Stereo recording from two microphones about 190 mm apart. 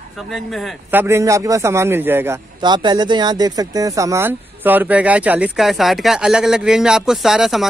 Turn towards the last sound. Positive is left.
turn(degrees=0)  # may be behind; listen again after turning